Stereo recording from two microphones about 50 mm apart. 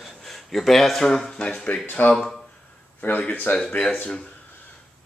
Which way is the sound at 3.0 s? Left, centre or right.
Left.